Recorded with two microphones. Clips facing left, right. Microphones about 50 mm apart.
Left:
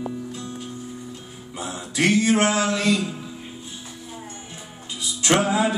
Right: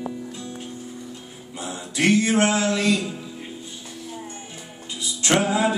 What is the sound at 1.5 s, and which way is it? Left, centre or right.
Music, left.